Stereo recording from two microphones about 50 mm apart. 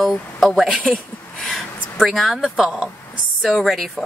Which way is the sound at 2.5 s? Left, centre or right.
Centre.